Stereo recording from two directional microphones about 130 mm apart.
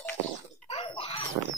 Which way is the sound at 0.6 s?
50° left (ahead or behind).